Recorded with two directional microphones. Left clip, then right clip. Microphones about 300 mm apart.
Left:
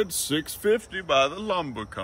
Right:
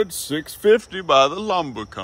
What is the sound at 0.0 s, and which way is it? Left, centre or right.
Speech, centre.